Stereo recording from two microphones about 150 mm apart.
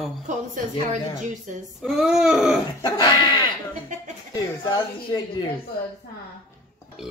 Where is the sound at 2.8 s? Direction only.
25° left (ahead or behind).